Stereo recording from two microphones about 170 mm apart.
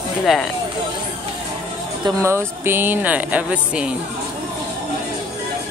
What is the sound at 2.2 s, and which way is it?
Speech, 15° right (ahead or behind).